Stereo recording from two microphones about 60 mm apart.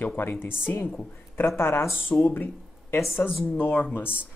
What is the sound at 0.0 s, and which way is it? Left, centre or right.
Speech, left.